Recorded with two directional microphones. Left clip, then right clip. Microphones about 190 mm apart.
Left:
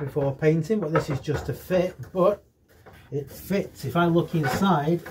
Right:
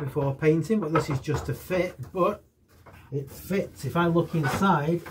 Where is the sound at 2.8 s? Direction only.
10° left (ahead or behind).